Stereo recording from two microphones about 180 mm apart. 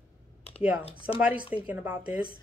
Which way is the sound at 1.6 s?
10° right (ahead or behind).